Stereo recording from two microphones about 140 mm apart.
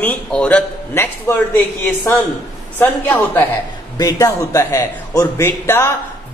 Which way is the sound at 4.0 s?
25° left (ahead or behind).